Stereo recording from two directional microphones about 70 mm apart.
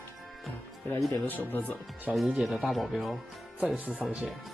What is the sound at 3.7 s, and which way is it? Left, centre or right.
Speech, right.